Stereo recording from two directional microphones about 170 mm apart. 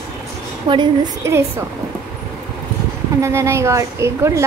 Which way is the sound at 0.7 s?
30° right (ahead or behind).